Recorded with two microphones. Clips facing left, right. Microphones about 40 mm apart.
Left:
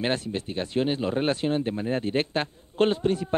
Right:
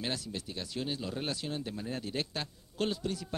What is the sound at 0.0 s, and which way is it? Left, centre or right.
Speech, left.